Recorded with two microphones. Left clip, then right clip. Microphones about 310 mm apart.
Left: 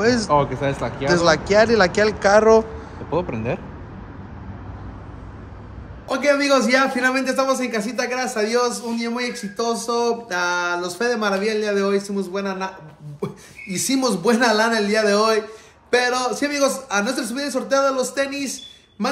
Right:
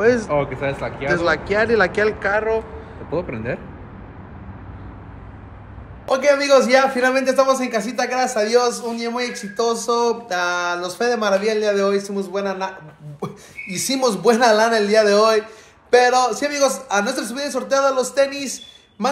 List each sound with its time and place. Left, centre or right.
0.0 s speech: centre
0.3 s speech: left
1.0 s a man's voice: centre
6.0 s a man's voice: centre